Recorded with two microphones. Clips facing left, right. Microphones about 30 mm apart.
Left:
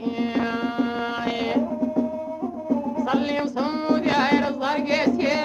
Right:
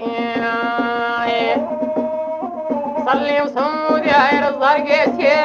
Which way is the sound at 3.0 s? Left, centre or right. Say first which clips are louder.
Right 7 dB; right.